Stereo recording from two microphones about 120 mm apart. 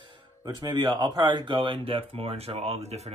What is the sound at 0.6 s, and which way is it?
Speech, 35° right (ahead or behind).